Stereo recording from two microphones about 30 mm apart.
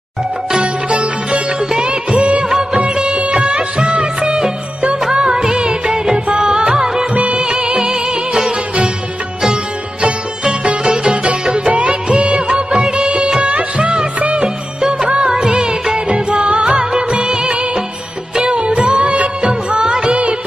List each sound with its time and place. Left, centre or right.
0.6 s sitar: right
2.1 s music of bollywood: right
2.8 s music of bollywood: right; by 7.1 s centre
7.2 s music of bollywood: right
7.6 s music: right
10.6 s music: right
11.9 s music of bollywood: right
12.7 s music of bollywood: right
13.5 s music of bollywood: right
16.1 s music: right
18.5 s music of bollywood: right
19.4 s music of bollywood: right